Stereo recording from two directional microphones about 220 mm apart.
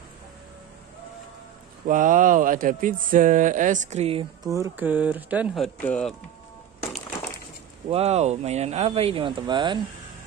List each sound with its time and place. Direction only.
1.9 s speech: 35° right (ahead or behind); by 6.1 s 5° left (ahead or behind)
7.9 s speech: 30° right (ahead or behind)